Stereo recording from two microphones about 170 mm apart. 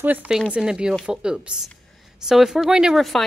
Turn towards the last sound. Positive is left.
turn(degrees=0)  # may be behind; listen again after turning